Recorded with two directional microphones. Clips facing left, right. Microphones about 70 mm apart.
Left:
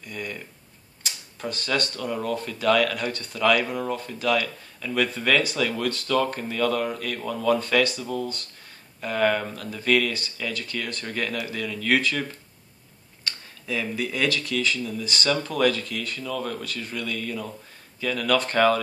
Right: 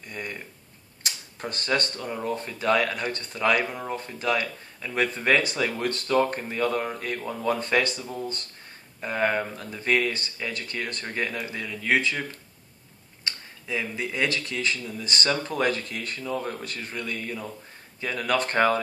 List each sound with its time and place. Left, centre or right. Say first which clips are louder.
0.1 s speech: left 1 dB; right
1.4 s speech: even; right
2.2 s speech: left 2 dB; right
9.0 s speech: left 2 dB; right